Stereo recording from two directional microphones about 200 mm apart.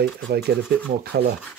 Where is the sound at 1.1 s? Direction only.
55° right (ahead or behind).